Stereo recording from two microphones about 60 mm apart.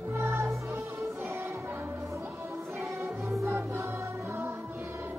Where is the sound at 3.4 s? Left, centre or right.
Right.